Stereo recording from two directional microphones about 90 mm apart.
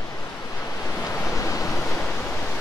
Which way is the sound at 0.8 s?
30° left (ahead or behind).